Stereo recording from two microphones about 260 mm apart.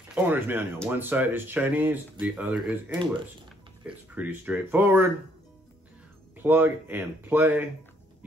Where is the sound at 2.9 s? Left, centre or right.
Centre.